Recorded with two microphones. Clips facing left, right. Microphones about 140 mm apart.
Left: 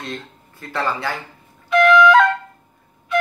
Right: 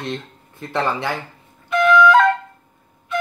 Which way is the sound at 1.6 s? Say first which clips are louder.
Left 1 dB; centre (ahead or behind).